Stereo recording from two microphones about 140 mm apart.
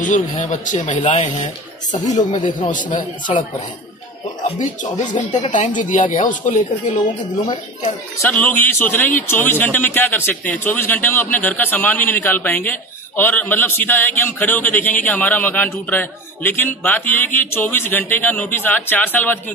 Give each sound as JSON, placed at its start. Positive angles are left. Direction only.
{"t": 0.0, "sound": "speech", "side_deg": 65}
{"t": 2.3, "sound": "speech", "side_deg": 35}
{"t": 2.7, "sound": "a man's voice", "side_deg": 65}
{"t": 5.5, "sound": "speech", "side_deg": 65}
{"t": 7.0, "sound": "speech", "side_deg": 30}
{"t": 8.2, "sound": "speech", "side_deg": 15}